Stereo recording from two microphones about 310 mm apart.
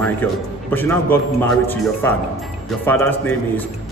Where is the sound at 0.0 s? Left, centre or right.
Centre.